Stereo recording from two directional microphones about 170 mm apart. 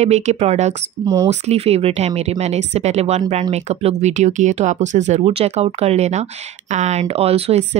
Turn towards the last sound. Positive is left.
turn(degrees=-35)  # may be behind; listen again after turning